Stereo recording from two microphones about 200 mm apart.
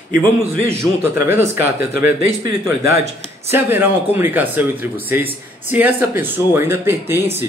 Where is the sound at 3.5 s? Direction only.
10° right (ahead or behind).